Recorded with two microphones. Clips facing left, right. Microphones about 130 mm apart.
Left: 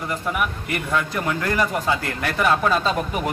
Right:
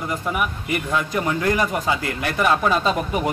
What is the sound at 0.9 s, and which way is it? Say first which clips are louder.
A man's voice: even; 15° right (ahead or behind).